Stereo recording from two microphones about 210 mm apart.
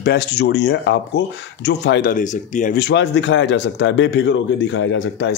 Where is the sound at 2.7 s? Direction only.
55° left (ahead or behind).